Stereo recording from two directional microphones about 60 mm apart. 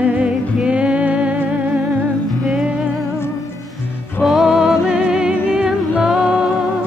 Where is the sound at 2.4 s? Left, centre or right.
Centre.